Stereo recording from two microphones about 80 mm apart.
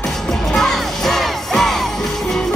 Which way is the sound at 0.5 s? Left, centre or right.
Centre.